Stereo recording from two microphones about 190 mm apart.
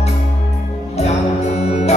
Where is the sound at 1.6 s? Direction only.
35° left (ahead or behind).